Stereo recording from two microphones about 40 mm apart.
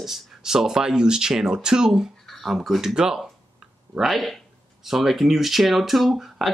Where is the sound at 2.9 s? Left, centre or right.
Centre.